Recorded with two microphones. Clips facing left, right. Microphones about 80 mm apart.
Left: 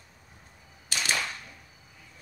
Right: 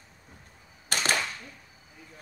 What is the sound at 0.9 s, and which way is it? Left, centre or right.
Cap gun, right.